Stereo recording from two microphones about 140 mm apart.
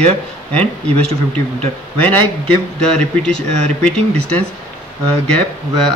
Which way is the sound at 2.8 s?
5° left (ahead or behind).